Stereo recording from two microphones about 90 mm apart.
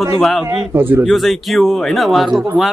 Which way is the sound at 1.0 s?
Centre (ahead or behind).